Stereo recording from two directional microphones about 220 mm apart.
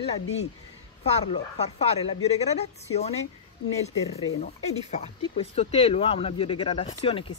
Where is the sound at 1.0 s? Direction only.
30° left (ahead or behind).